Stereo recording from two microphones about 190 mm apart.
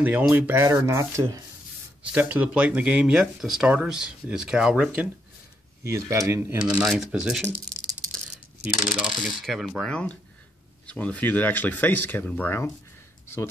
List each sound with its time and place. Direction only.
0.0 s speech: 10° right (ahead or behind)
5.9 s speech: 15° right (ahead or behind)
6.8 s speech: centre (ahead or behind)
8.9 s speech: centre (ahead or behind)